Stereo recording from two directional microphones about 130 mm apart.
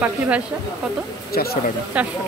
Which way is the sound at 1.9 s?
10° right (ahead or behind).